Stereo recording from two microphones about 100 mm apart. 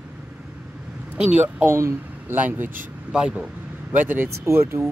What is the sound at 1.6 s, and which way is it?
Speech, 25° right (ahead or behind).